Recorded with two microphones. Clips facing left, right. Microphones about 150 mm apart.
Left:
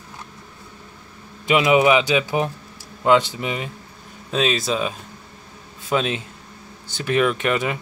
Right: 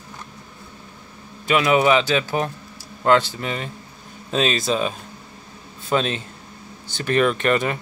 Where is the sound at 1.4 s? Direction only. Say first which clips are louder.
Left 1 dB; 20° left (ahead or behind).